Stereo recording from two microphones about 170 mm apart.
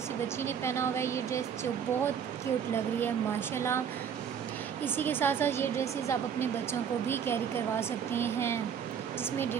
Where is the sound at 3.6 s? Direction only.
15° left (ahead or behind).